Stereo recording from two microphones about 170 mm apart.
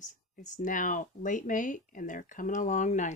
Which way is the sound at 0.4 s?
50° left (ahead or behind).